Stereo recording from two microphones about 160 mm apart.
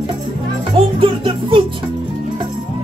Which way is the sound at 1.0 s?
35° right (ahead or behind).